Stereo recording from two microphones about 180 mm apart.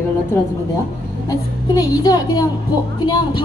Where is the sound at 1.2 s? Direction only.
20° left (ahead or behind).